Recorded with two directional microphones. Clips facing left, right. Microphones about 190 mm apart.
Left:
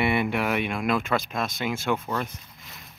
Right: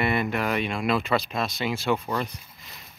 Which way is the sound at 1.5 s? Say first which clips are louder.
Right 1 dB; 50° left (ahead or behind).